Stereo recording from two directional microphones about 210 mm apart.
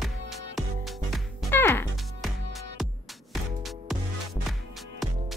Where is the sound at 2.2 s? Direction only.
Centre (ahead or behind).